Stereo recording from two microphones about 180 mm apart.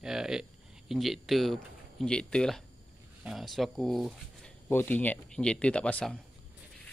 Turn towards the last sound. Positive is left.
turn(degrees=5)  # may be behind; listen again after turning